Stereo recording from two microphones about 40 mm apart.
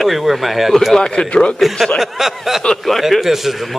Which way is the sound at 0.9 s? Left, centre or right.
Centre.